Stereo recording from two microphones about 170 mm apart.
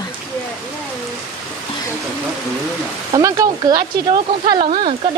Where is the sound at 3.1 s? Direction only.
20° right (ahead or behind).